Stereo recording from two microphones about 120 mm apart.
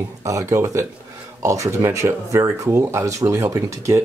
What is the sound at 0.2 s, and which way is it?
Speech, 25° right (ahead or behind).